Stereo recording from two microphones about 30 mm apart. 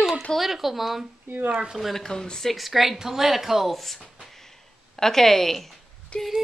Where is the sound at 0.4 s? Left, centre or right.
Centre.